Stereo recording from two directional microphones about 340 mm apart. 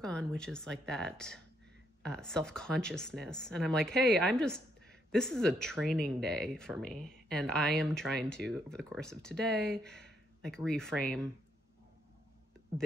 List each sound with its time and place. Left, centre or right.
0.0 s speech: centre